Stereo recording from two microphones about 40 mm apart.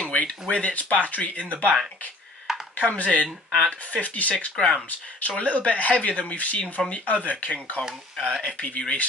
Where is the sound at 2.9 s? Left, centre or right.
Left.